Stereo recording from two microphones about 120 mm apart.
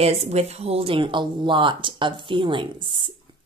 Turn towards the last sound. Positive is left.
turn(degrees=-45)  # may be behind; listen again after turning